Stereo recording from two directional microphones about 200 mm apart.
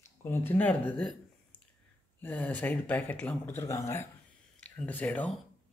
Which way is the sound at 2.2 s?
10° left (ahead or behind).